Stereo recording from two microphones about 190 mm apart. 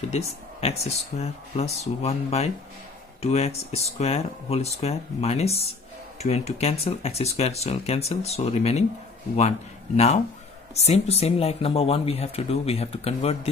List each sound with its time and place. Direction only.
0.1 s speech: 35° left (ahead or behind)
9.9 s speech: 35° left (ahead or behind)